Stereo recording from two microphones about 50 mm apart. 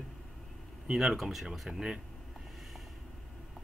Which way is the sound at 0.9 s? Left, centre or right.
Centre.